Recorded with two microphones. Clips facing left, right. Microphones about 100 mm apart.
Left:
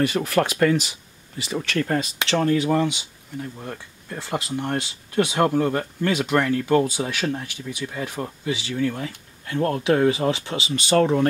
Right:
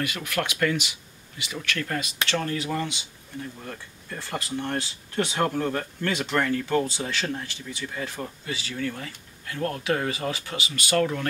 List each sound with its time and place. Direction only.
0.0 s speech: 35° left (ahead or behind)